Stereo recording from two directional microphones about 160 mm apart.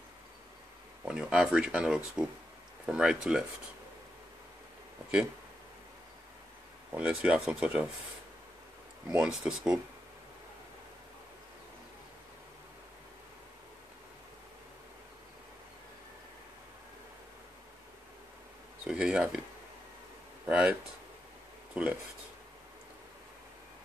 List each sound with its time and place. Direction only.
1.0 s speech: 5° right (ahead or behind)
6.9 s speech: 10° right (ahead or behind)
9.1 s speech: 5° right (ahead or behind)
18.9 s speech: 5° right (ahead or behind)
20.4 s speech: 10° right (ahead or behind)